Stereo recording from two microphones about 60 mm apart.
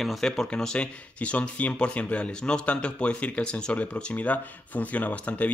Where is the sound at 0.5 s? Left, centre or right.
Centre.